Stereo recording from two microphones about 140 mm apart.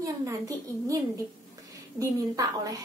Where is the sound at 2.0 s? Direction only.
25° right (ahead or behind).